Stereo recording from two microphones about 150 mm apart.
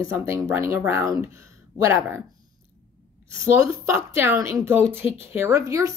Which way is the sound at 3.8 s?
20° right (ahead or behind).